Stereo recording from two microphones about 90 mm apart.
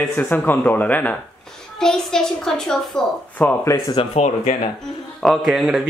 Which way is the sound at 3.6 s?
35° left (ahead or behind).